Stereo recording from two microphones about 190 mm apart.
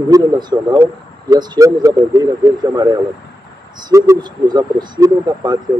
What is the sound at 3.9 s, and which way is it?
Speech, 20° right (ahead or behind).